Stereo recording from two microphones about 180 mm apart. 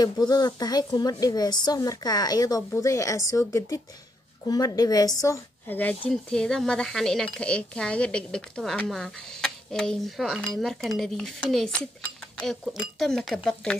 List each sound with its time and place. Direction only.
0.0 s a woman's voice: 20° left (ahead or behind); by 13.7 s 5° left (ahead or behind)